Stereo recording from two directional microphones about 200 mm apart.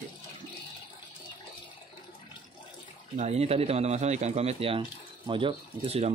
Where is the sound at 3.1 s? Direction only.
35° right (ahead or behind).